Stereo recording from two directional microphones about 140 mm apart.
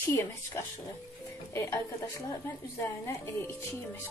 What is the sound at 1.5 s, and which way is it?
Speech, 20° left (ahead or behind).